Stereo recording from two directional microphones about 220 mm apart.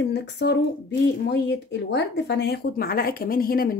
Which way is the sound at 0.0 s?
50° left (ahead or behind).